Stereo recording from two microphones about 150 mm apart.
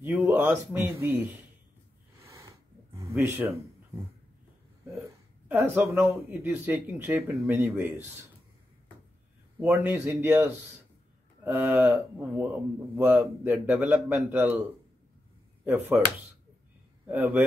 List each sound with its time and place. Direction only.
0.0 s a man's voice: 10° right (ahead or behind)
2.1 s snort: 20° right (ahead or behind)
5.5 s a man's voice: 15° right (ahead or behind)
9.6 s a man's voice: 10° right (ahead or behind)
17.1 s a man's voice: 10° right (ahead or behind)